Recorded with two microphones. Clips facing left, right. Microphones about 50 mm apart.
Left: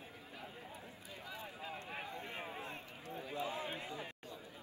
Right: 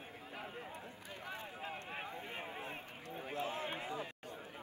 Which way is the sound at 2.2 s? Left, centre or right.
Centre.